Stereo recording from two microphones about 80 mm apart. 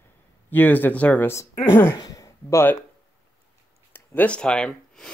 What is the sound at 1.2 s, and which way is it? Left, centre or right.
Speech, left.